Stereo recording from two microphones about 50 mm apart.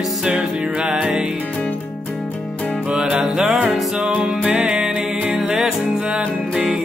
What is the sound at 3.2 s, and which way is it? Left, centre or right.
Music, centre.